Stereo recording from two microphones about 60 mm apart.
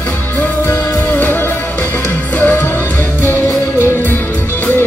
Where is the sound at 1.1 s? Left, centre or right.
Left.